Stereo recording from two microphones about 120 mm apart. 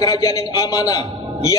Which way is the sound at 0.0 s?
30° left (ahead or behind).